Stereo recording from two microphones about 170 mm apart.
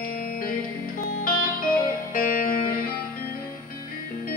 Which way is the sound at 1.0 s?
55° left (ahead or behind).